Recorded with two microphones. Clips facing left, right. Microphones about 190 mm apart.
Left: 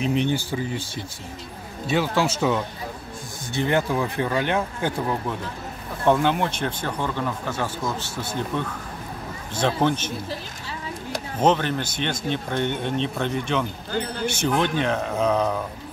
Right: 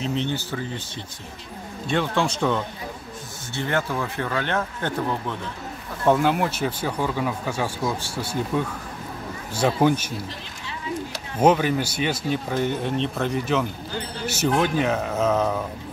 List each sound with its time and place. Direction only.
0.0 s speech: 15° left (ahead or behind)
1.9 s speech: 5° left (ahead or behind)
6.0 s speech: 5° right (ahead or behind)
11.3 s speech: 10° right (ahead or behind)